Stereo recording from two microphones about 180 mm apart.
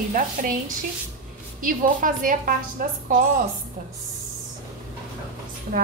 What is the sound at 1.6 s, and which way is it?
A woman's voice, 50° right (ahead or behind).